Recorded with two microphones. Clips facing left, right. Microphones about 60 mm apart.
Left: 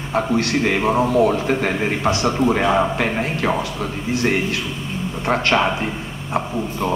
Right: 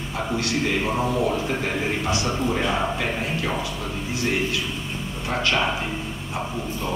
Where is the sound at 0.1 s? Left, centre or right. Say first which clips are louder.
Left 7 dB; left.